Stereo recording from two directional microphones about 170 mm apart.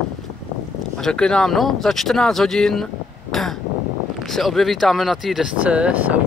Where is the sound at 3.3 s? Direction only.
Centre (ahead or behind).